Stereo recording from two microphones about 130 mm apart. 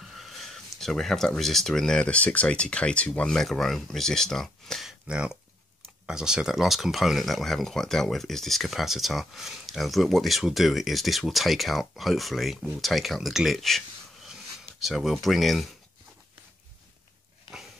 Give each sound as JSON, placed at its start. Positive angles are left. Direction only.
{"t": 0.0, "sound": "speech", "side_deg": 0}